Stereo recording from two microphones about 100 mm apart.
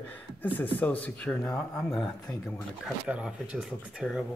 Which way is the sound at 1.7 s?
5° left (ahead or behind).